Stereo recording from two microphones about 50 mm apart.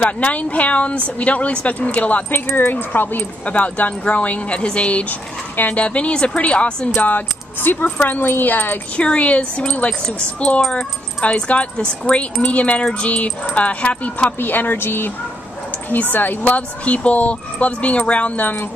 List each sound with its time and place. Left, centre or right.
0.0 s speech: left
2.4 s speech: left
3.4 s speech: left
7.0 s speech: left
8.9 s speech: left